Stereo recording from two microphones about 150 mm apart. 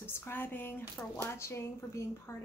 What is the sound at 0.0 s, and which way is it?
Speech, 15° left (ahead or behind).